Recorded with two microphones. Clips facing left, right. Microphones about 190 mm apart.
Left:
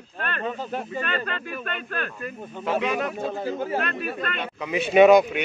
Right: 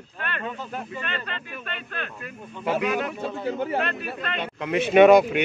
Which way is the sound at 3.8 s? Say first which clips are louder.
Even; 50° left (ahead or behind).